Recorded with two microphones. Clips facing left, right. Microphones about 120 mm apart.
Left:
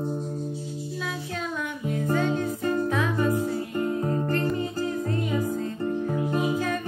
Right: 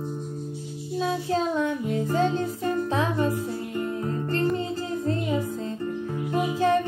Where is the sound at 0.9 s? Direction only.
30° right (ahead or behind).